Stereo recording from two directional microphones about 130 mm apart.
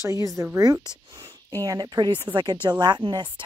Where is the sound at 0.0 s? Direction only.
25° right (ahead or behind).